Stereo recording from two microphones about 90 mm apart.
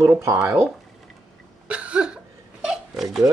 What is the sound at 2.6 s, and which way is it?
Crying, 5° right (ahead or behind).